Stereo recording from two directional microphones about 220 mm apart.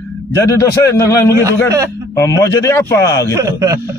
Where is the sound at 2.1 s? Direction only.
15° left (ahead or behind).